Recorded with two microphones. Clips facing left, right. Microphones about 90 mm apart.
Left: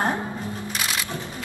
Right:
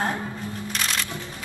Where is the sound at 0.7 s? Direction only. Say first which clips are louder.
Right 1 dB; 10° left (ahead or behind).